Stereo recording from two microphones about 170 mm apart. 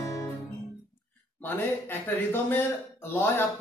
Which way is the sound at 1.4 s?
10° left (ahead or behind).